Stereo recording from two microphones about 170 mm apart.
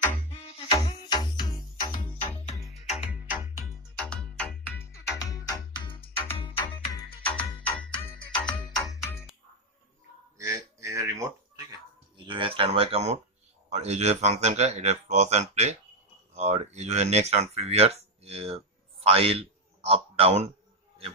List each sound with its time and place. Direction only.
0.6 s music: 35° left (ahead or behind)
2.5 s music: centre (ahead or behind)
3.9 s music: 5° left (ahead or behind)
4.7 s music: 15° left (ahead or behind)
7.6 s music: 10° left (ahead or behind)
10.3 s a sound: 15° right (ahead or behind)
12.3 s a man's voice: 30° right (ahead or behind)